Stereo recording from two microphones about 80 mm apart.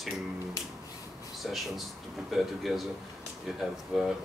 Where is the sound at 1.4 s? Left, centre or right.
Centre.